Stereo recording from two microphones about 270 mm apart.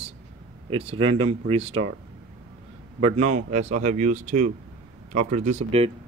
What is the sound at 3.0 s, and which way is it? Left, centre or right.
Speech, right.